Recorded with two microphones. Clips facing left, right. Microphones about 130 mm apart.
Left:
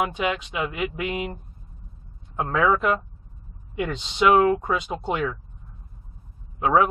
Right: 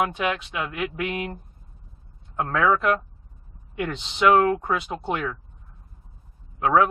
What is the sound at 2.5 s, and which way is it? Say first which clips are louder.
Speech: even; 20° left (ahead or behind).